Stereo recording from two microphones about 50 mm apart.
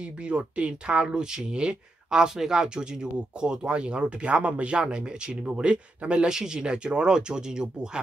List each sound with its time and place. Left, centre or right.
0.3 s speech: right